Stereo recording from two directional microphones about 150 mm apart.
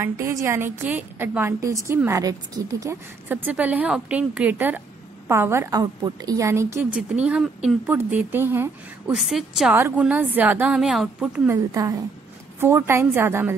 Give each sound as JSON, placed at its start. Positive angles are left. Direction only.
{"t": 0.0, "sound": "a woman's voice", "side_deg": -20}
{"t": 9.1, "sound": "a woman's voice", "side_deg": -5}
{"t": 11.4, "sound": "a woman's voice", "side_deg": -20}